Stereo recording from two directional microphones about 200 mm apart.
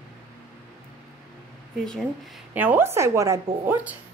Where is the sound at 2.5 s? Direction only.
10° right (ahead or behind).